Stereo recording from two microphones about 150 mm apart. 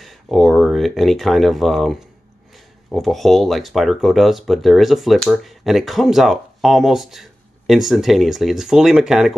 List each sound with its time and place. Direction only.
0.0 s speech: centre (ahead or behind)